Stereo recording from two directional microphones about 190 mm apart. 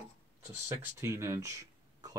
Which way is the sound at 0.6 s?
15° right (ahead or behind).